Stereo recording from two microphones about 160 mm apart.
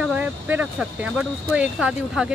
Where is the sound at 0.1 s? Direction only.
10° right (ahead or behind).